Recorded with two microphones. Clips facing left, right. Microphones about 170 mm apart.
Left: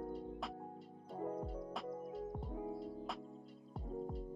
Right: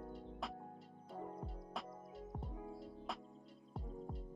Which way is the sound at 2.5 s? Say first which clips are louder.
Left 7 dB; 25° left (ahead or behind).